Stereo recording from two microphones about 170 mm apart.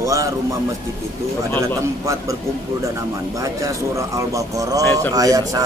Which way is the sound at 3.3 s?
20° right (ahead or behind).